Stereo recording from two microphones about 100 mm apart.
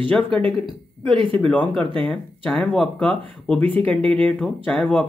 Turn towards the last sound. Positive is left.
turn(degrees=10)  # may be behind; listen again after turning